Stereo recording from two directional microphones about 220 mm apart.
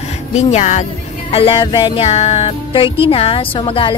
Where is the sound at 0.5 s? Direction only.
30° left (ahead or behind).